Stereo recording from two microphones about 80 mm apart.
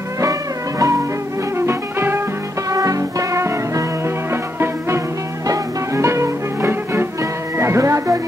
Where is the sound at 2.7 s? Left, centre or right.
Right.